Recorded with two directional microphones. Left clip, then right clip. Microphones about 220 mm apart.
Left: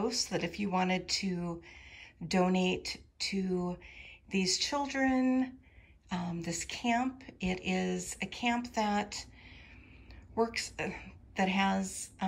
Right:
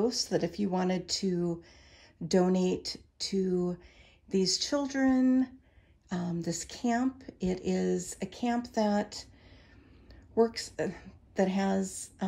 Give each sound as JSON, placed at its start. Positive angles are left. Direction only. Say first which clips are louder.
{"t": 0.0, "sound": "speech", "louder": "right 4 dB", "side_deg": -15}
{"t": 3.8, "sound": "a sound", "louder": "left 7 dB", "side_deg": -45}
{"t": 4.3, "sound": "speech", "louder": "right 3 dB", "side_deg": -15}
{"t": 10.3, "sound": "a woman's voice", "louder": "right 4 dB", "side_deg": -15}
{"t": 11.4, "sound": "a woman's voice", "louder": "left 2 dB", "side_deg": -50}
{"t": 11.7, "sound": "speech", "louder": "right 2 dB", "side_deg": -15}